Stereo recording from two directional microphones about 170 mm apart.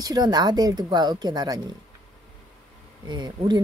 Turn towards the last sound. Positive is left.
turn(degrees=-25)  # may be behind; listen again after turning